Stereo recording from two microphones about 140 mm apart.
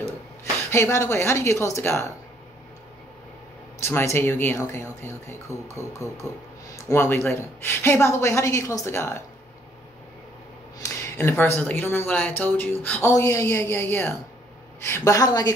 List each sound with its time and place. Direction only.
0.7 s speech: 20° left (ahead or behind)
3.8 s speech: 20° left (ahead or behind)
10.8 s speech: 15° left (ahead or behind)